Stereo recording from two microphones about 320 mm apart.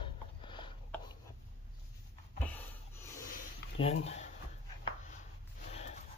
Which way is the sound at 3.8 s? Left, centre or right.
Centre.